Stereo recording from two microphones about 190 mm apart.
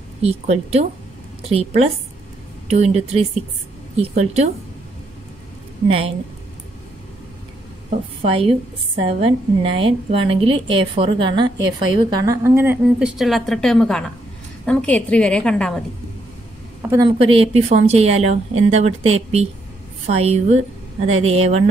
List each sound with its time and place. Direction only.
0.2 s speech: 35° right (ahead or behind)
5.9 s a woman's voice: 30° right (ahead or behind)
8.2 s a woman's voice: 30° right (ahead or behind); by 13.1 s 10° right (ahead or behind)
13.2 s a woman's voice: centre (ahead or behind)
16.8 s a woman's voice: 10° right (ahead or behind)
17.2 s speech: 30° right (ahead or behind)